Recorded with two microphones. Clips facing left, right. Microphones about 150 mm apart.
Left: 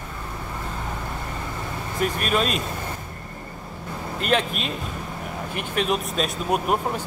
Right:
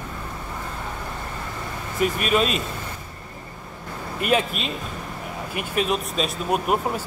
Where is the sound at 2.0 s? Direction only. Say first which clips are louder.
Right 2 dB; centre (ahead or behind).